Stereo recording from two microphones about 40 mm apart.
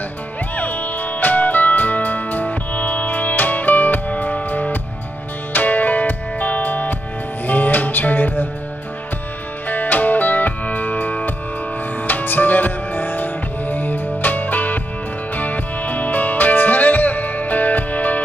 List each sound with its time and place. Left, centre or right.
0.6 s music: left
9.7 s music: left